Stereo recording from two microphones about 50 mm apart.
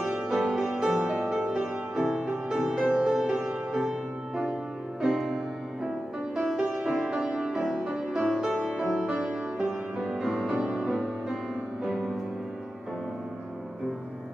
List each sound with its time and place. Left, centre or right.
0.0 s music: centre
5.0 s music: centre